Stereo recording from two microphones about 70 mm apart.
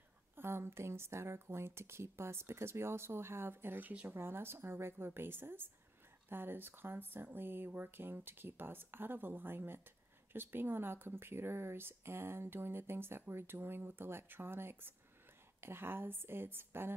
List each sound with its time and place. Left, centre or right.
0.4 s speech: right